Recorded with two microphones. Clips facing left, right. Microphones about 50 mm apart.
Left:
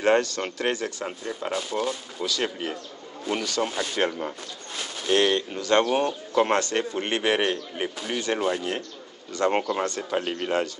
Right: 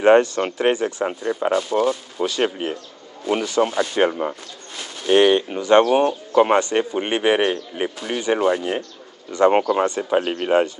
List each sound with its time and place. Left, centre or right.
0.0 s speech: right